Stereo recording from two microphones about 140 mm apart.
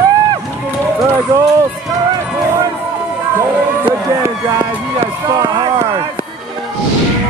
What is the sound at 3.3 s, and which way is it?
Speech, 20° right (ahead or behind).